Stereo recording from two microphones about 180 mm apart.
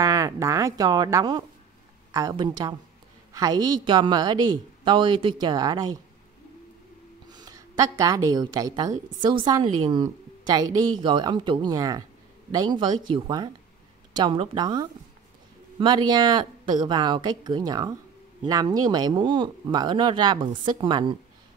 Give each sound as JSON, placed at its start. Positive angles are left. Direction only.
{"t": 0.0, "sound": "a woman's voice", "side_deg": -15}
{"t": 7.3, "sound": "a woman's voice", "side_deg": -20}